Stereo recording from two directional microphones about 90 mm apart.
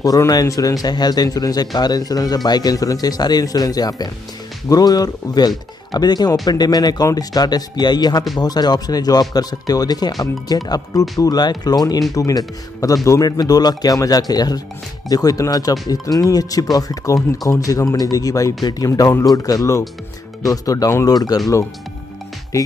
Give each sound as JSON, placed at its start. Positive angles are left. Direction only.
{"t": 0.3, "sound": "speech", "side_deg": 40}
{"t": 18.9, "sound": "speech", "side_deg": 40}